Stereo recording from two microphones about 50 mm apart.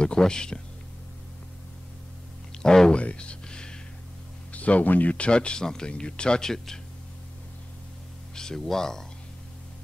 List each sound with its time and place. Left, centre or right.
0.0 s speech: centre
2.6 s speech: centre
3.0 s a sound: left
4.5 s speech: left
5.1 s speech: left
6.5 s speech: centre
8.4 s speech: centre